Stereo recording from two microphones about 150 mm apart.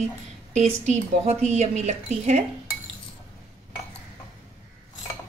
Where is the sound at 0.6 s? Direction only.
45° right (ahead or behind).